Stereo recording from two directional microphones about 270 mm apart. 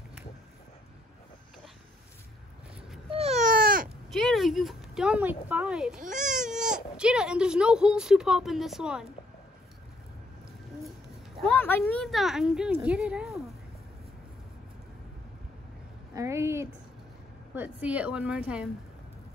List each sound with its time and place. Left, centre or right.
3.1 s baby cry: right
4.1 s speech: centre
5.9 s speech: right
7.0 s speech: centre
11.4 s speech: centre
16.2 s speech: centre